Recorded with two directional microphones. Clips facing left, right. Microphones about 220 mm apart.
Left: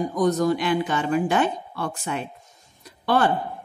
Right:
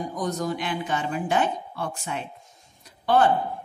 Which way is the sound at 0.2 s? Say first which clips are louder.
Left 8 dB; 65° left (ahead or behind).